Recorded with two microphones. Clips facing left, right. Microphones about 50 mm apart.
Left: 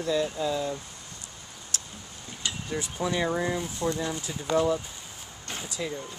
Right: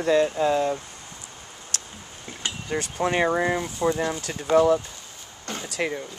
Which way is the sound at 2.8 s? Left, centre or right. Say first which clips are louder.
Right 6 dB; right.